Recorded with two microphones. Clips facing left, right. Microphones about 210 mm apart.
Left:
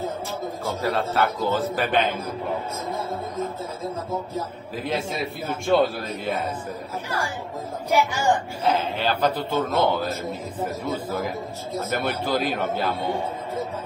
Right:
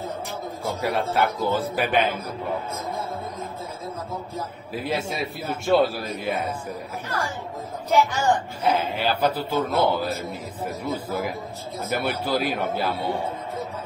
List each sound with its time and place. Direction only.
0.8 s a man's voice: 15° right (ahead or behind)
4.7 s a man's voice: 5° right (ahead or behind)
7.9 s a woman's voice: 10° left (ahead or behind)
8.6 s a man's voice: 10° right (ahead or behind)